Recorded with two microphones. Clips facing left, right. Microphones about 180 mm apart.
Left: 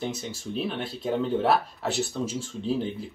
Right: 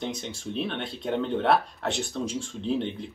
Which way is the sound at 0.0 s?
5° left (ahead or behind).